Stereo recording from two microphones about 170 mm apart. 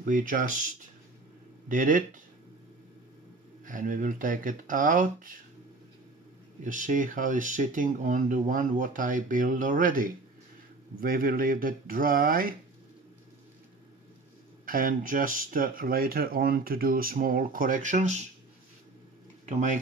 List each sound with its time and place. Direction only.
0.0 s speech: 50° right (ahead or behind)
1.7 s speech: 50° right (ahead or behind)
3.6 s speech: 50° right (ahead or behind)
6.6 s speech: 50° right (ahead or behind)
14.7 s speech: 55° right (ahead or behind)
19.4 s speech: 45° right (ahead or behind)